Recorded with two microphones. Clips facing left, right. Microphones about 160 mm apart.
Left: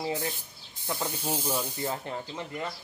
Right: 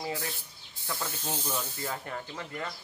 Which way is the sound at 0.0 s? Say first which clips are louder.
Left 4 dB; 20° left (ahead or behind).